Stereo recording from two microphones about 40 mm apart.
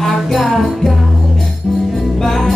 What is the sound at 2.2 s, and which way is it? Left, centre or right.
Music, centre.